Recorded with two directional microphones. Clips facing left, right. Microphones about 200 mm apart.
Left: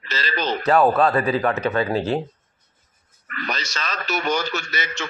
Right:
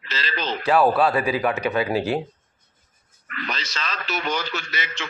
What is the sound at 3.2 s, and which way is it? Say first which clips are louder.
A man's voice: left 2 dB; 45° left (ahead or behind).